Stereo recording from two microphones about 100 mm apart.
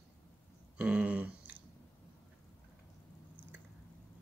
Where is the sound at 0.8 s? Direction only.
10° right (ahead or behind).